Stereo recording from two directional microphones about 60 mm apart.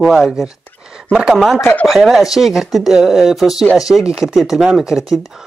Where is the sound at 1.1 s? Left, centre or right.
Centre.